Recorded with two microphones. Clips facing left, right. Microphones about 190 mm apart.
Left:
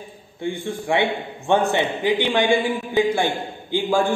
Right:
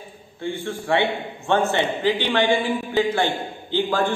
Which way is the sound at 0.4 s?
15° left (ahead or behind).